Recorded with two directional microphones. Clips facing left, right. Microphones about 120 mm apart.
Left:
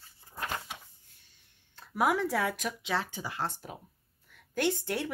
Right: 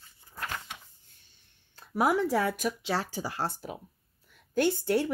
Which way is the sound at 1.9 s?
30° right (ahead or behind).